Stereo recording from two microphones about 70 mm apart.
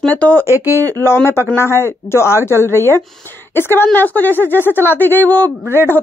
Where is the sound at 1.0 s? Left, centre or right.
Left.